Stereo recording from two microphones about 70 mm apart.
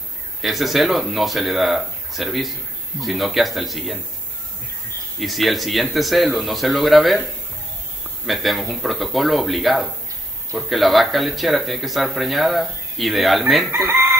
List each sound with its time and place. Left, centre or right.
0.4 s speech: centre
5.2 s speech: centre
8.3 s speech: centre
13.8 s chicken: right